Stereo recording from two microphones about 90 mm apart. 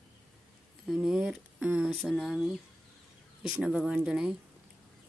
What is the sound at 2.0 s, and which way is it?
Speech, centre (ahead or behind).